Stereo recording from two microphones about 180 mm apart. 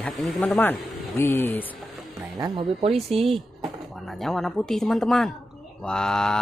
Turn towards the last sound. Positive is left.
turn(degrees=5)  # may be behind; listen again after turning